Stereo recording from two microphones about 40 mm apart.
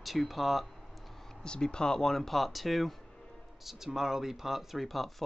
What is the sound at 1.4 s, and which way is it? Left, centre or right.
Speech, left.